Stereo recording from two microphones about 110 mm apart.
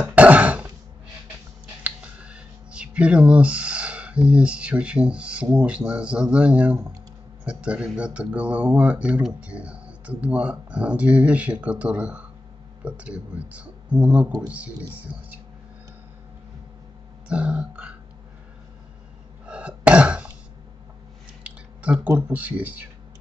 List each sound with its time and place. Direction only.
0.0 s throat clearing: 10° right (ahead or behind)
1.8 s speech: 10° right (ahead or behind)
17.3 s speech: 10° right (ahead or behind)
19.4 s throat clearing: 10° right (ahead or behind)
21.5 s speech: 10° right (ahead or behind)